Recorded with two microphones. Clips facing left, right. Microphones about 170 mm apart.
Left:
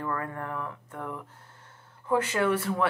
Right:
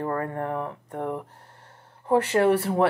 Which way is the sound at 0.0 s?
35° right (ahead or behind).